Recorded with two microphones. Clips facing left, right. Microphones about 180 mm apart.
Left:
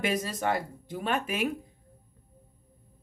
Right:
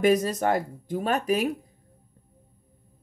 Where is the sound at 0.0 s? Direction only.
45° right (ahead or behind).